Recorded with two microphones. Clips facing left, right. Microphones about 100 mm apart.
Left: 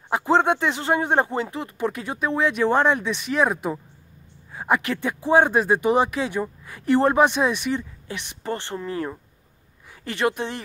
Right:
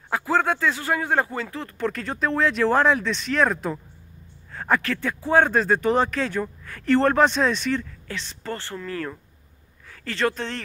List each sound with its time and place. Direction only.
0.1 s speech: 25° left (ahead or behind); by 3.0 s centre (ahead or behind)
3.0 s speech: 15° left (ahead or behind)